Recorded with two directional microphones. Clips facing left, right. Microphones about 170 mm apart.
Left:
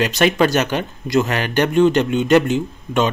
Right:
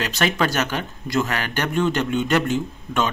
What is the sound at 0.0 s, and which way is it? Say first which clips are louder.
Speech: left 6 dB; 20° left (ahead or behind).